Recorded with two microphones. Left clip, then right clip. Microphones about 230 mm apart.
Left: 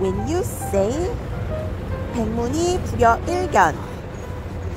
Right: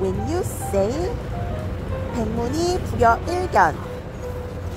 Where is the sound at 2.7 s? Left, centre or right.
Centre.